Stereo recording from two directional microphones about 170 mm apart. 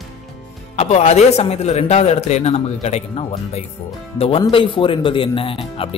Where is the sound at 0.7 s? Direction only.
40° left (ahead or behind).